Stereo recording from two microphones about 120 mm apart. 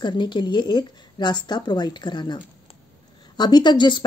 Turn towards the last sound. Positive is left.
turn(degrees=40)  # may be behind; listen again after turning